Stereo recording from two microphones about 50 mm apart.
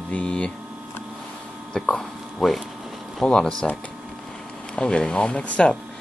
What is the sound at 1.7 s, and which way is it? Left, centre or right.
Speech, centre.